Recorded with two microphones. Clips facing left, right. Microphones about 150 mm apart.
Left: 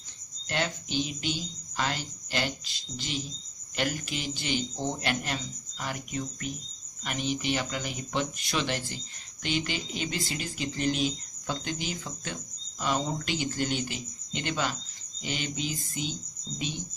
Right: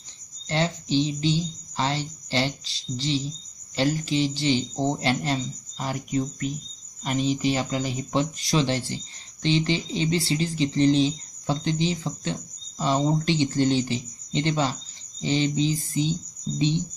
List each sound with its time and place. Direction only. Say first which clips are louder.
0.5 s speech: right 7 dB; 30° right (ahead or behind)